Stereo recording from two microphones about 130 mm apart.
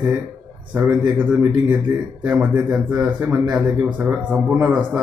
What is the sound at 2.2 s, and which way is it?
Mantra, 10° right (ahead or behind).